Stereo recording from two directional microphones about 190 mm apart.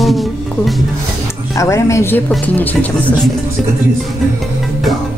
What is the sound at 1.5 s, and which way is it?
Speech, 15° left (ahead or behind).